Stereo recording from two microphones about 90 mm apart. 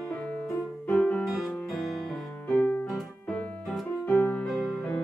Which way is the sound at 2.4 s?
15° left (ahead or behind).